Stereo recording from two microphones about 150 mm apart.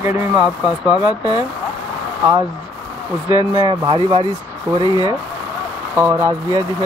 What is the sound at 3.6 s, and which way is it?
Rub, 30° right (ahead or behind).